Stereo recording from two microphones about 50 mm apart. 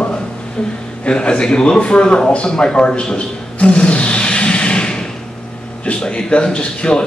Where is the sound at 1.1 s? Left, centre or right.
Centre.